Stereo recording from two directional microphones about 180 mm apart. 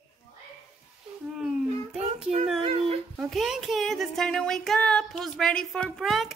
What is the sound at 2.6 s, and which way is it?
Dog, 35° right (ahead or behind).